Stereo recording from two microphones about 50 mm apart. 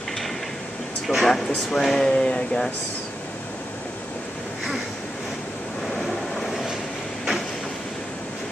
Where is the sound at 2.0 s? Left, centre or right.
Centre.